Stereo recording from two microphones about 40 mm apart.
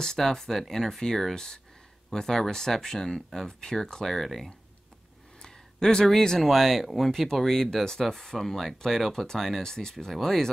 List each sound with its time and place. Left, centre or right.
0.2 s speech: centre
5.4 s a sound: centre
6.0 s speech: centre
6.4 s speech: centre